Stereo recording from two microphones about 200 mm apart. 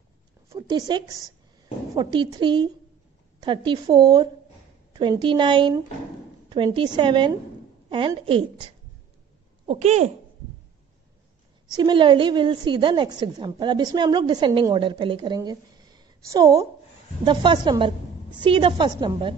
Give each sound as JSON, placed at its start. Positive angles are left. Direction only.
{"t": 0.6, "sound": "a woman's voice", "side_deg": -20}
{"t": 9.7, "sound": "speech", "side_deg": -35}
{"t": 11.7, "sound": "a woman's voice", "side_deg": -25}